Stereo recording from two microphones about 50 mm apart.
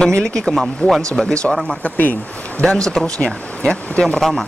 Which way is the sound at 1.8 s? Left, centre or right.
Left.